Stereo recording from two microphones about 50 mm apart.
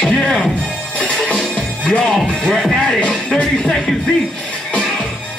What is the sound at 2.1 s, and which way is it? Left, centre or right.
Music, centre.